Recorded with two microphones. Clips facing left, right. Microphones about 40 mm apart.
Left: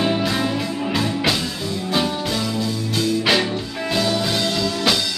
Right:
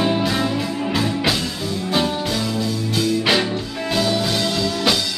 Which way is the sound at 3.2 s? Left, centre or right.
Centre.